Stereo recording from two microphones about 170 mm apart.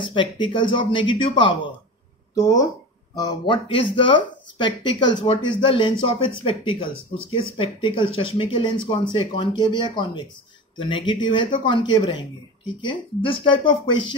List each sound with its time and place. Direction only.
0.1 s speech: 30° left (ahead or behind)